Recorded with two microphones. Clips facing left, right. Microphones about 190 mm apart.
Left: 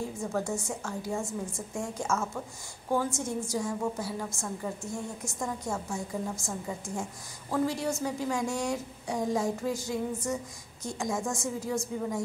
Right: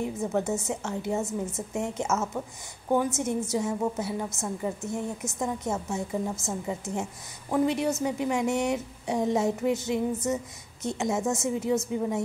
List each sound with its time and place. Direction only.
0.0 s a woman's voice: 20° right (ahead or behind)